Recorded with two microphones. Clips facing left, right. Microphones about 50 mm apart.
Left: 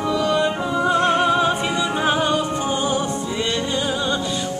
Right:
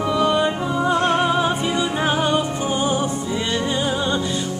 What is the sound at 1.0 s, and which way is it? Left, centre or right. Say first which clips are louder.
Music: left 1 dB; centre.